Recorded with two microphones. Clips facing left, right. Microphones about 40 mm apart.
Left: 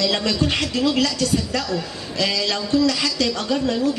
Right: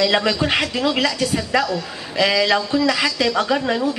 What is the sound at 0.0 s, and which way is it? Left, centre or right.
A woman's voice, right.